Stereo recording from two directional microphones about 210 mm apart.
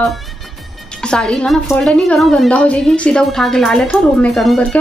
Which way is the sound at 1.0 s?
5° left (ahead or behind).